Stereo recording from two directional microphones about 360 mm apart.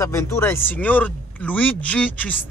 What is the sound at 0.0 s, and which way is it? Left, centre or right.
Speech, centre.